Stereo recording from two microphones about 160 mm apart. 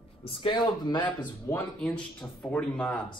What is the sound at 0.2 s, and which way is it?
Speech, 35° left (ahead or behind).